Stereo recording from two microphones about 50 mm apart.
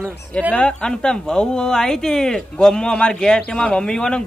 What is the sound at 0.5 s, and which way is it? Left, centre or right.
Speech, centre.